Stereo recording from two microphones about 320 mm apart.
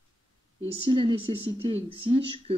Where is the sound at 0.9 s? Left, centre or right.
Centre.